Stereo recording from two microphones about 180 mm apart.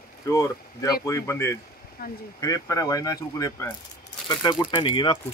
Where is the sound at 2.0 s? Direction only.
55° left (ahead or behind).